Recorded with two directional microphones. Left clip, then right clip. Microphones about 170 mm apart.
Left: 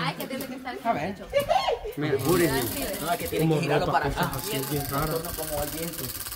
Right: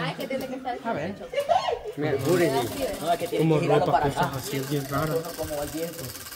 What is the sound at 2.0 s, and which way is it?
Speech, 65° left (ahead or behind).